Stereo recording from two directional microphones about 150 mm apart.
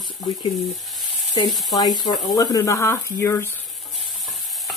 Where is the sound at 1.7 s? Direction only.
25° left (ahead or behind).